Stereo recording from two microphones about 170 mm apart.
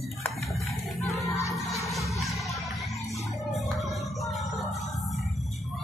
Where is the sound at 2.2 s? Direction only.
Centre (ahead or behind).